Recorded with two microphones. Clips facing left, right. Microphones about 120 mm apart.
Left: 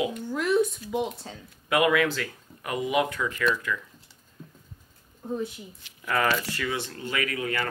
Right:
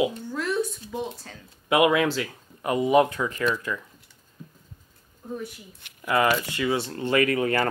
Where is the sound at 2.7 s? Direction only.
30° right (ahead or behind).